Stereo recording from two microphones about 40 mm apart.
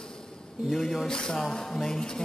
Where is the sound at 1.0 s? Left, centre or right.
Centre.